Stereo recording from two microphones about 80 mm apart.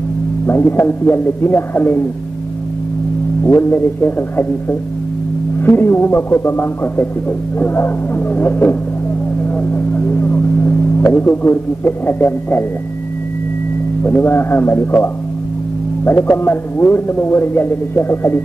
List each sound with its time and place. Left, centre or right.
0.5 s a man's voice: left
3.4 s a man's voice: left
9.7 s a sound: left
11.1 s a man's voice: left
14.0 s a man's voice: left